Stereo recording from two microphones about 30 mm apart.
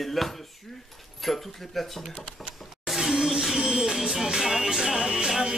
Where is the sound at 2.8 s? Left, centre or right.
Centre.